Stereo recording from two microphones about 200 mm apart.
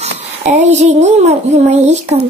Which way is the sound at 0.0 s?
35° right (ahead or behind).